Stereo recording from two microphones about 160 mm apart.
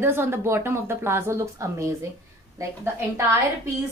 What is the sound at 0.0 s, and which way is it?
Speech, 15° right (ahead or behind).